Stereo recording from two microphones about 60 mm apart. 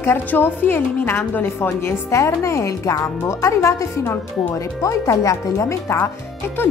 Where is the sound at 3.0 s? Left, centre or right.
Left.